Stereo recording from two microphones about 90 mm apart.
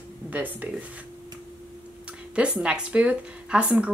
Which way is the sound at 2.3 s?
10° right (ahead or behind).